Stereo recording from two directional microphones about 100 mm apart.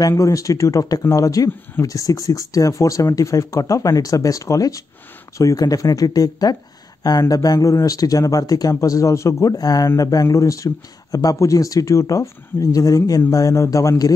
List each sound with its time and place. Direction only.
0.1 s speech: 35° left (ahead or behind)